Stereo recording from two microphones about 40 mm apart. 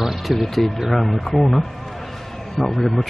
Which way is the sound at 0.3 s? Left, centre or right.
Centre.